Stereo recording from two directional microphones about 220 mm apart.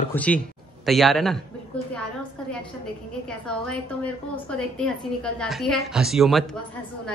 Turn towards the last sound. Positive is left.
turn(degrees=0)  # may be behind; listen again after turning